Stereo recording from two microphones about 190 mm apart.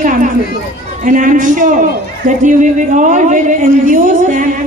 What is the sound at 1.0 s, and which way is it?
A woman's voice, 45° right (ahead or behind).